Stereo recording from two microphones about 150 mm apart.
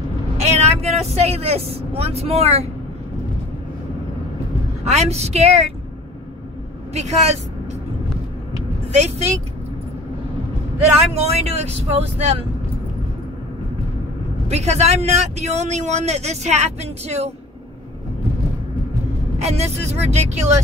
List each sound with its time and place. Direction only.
0.4 s speech: 45° right (ahead or behind)
4.8 s speech: 45° right (ahead or behind)
6.9 s speech: 45° right (ahead or behind)
8.9 s speech: 45° right (ahead or behind)
11.1 s speech: 45° right (ahead or behind)
14.5 s speech: 45° right (ahead or behind)
19.3 s speech: 45° right (ahead or behind)